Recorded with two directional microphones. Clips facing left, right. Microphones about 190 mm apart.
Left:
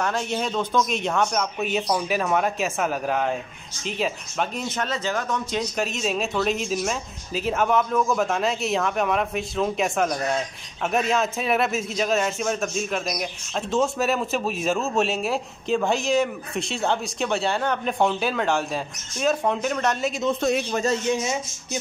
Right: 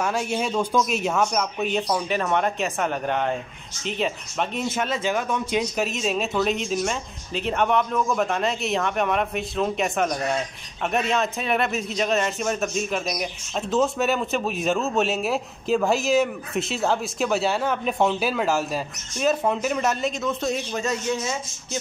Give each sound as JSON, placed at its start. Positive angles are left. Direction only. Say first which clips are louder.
{"t": 0.0, "sound": "speech", "louder": "right 1 dB", "side_deg": -10}
{"t": 4.7, "sound": "speech", "louder": "right 2 dB", "side_deg": -10}
{"t": 5.9, "sound": "speech", "louder": "right 1 dB", "side_deg": 0}
{"t": 20.4, "sound": "a man's voice", "louder": "left 3 dB", "side_deg": 65}
{"t": 21.1, "sound": "speech", "louder": "left 2 dB", "side_deg": 15}